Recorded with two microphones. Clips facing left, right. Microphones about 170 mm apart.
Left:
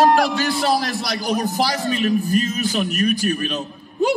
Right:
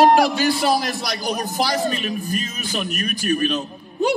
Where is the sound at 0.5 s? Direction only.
Centre (ahead or behind).